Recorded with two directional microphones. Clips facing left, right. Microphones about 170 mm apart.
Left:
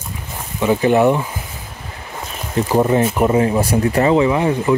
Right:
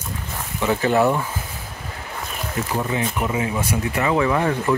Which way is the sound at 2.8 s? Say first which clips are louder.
Left 11 dB; 45° left (ahead or behind).